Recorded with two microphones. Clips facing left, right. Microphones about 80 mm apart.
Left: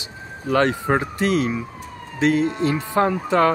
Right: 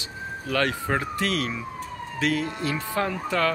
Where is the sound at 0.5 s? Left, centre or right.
Left.